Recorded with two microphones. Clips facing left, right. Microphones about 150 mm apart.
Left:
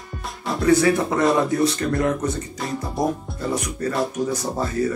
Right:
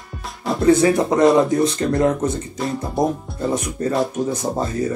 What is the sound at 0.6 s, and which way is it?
Speech, 20° right (ahead or behind).